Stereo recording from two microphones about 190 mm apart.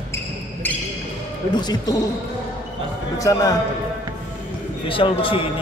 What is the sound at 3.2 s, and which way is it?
Speech, 15° left (ahead or behind).